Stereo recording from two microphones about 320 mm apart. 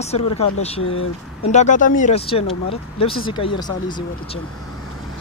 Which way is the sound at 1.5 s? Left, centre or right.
Left.